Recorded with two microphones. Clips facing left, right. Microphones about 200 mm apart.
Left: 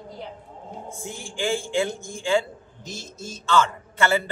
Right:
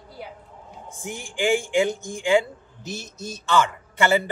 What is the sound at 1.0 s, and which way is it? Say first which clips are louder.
Speech: right 4 dB; 15° right (ahead or behind).